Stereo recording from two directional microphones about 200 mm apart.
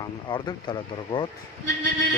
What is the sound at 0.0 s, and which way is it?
Speech, 20° left (ahead or behind).